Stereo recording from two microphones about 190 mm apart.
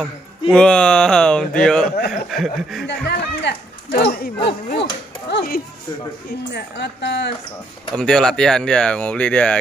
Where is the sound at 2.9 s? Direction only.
65° left (ahead or behind).